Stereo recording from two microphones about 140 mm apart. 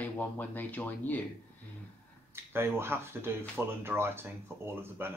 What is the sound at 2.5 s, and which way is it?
Speech, 15° right (ahead or behind).